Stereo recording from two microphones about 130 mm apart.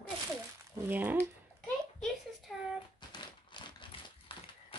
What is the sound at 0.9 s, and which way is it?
Speech, 15° right (ahead or behind).